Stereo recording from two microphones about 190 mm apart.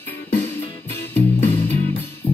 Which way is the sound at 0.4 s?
10° left (ahead or behind).